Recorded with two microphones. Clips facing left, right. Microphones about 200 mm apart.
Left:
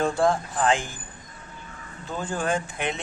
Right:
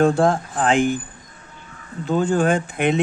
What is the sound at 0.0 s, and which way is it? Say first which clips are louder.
Speech: right 6 dB; 55° right (ahead or behind).